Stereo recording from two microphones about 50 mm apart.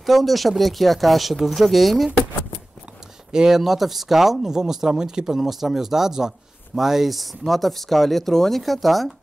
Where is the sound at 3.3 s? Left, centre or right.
Centre.